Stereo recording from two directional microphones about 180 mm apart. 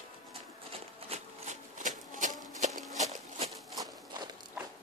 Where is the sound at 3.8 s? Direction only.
25° right (ahead or behind).